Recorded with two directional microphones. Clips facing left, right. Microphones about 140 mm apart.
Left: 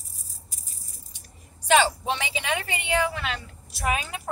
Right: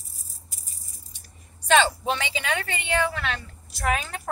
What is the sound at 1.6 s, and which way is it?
Speech, 15° left (ahead or behind).